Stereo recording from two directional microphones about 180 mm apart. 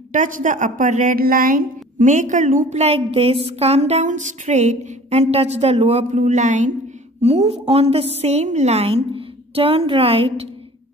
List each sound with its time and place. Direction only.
0.1 s a woman's voice: 45° right (ahead or behind)